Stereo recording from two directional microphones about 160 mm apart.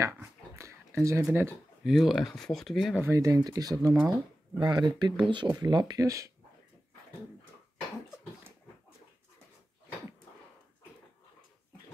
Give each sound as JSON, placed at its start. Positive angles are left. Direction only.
{"t": 0.0, "sound": "dog", "side_deg": -15}
{"t": 1.9, "sound": "speech", "side_deg": 0}
{"t": 3.0, "sound": "speech", "side_deg": -20}
{"t": 3.9, "sound": "speech", "side_deg": 0}
{"t": 4.6, "sound": "speech", "side_deg": -25}